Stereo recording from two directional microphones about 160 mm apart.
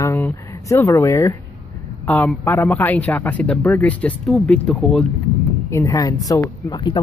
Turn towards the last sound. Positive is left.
turn(degrees=30)  # may be behind; listen again after turning